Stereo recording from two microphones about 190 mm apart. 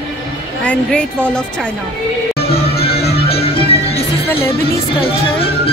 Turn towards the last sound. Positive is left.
turn(degrees=30)  # may be behind; listen again after turning